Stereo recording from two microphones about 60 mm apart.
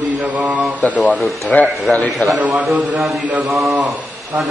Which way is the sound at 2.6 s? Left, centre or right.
Right.